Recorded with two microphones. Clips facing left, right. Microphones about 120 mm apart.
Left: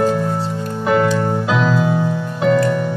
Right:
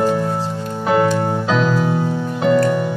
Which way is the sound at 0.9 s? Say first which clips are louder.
Even; 40° right (ahead or behind).